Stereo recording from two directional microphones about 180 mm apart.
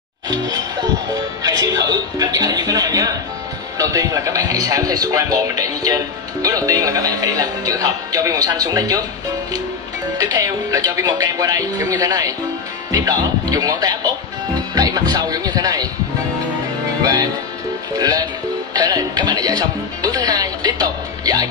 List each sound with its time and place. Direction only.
1.1 s a man's voice: 20° right (ahead or behind)
10.1 s a man's voice: 20° right (ahead or behind)
17.0 s a man's voice: 20° right (ahead or behind)